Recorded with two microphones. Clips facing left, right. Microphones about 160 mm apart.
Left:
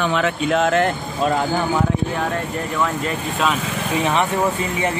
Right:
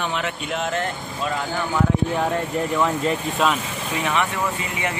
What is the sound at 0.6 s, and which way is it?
Speech, 85° left.